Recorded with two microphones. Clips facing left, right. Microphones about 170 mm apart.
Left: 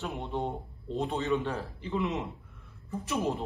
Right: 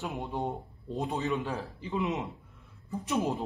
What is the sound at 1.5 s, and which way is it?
Speech, 15° right (ahead or behind).